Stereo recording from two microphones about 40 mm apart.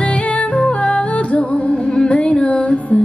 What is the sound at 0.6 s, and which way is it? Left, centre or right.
Music, left.